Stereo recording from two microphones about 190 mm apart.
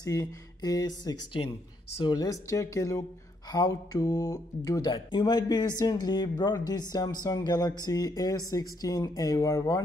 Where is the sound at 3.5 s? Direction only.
20° left (ahead or behind).